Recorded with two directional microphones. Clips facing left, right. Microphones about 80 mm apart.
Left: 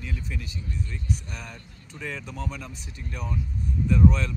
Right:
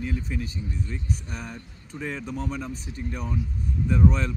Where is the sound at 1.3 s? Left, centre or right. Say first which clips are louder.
Right 3 dB; right.